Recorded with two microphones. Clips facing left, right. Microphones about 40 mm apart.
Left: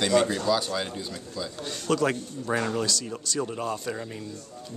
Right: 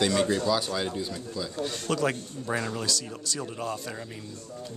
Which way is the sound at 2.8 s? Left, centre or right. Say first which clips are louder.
Left 3 dB; centre.